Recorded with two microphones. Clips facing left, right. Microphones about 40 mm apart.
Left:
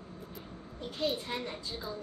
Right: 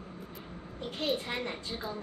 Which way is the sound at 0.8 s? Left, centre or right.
Right.